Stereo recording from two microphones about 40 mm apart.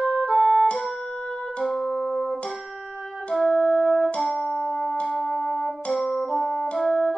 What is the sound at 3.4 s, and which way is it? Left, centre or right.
Music, centre.